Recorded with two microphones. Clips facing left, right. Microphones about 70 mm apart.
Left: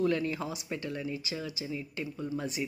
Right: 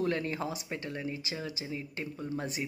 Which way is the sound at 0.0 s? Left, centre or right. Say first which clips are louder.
Left 2 dB; right.